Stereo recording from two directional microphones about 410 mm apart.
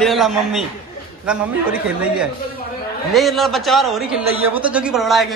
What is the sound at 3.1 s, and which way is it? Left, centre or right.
A man's voice, centre.